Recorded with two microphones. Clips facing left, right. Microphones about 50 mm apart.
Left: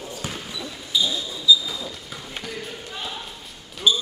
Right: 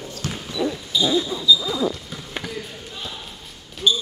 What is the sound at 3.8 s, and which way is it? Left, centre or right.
Basketball bounce, centre.